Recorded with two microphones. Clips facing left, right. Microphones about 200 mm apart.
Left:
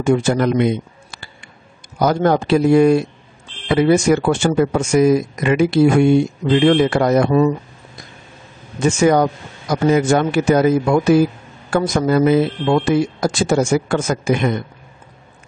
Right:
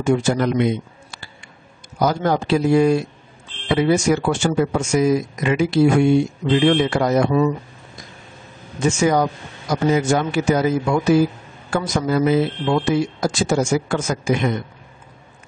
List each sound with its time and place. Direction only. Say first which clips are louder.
0.0 s speech: left 3 dB; 60° left (ahead or behind)
2.0 s speech: left 4 dB; 55° left (ahead or behind)
8.8 s speech: left 3 dB; 60° left (ahead or behind)